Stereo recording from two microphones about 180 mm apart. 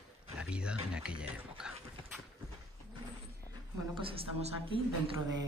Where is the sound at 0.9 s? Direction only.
5° right (ahead or behind).